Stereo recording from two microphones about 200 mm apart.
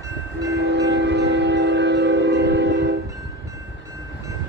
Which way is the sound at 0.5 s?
55° right (ahead or behind).